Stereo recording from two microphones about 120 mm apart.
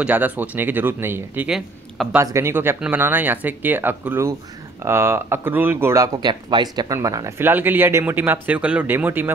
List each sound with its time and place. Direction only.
0.0 s speech: 15° right (ahead or behind)
6.2 s speech: 35° right (ahead or behind); by 9.3 s 15° right (ahead or behind)